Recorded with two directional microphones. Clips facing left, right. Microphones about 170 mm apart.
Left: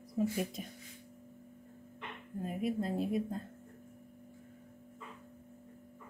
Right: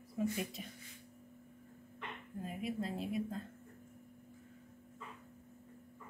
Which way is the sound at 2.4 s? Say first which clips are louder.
Left 5 dB; 45° left (ahead or behind).